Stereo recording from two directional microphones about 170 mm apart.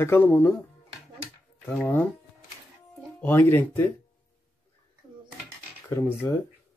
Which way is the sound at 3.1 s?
10° left (ahead or behind).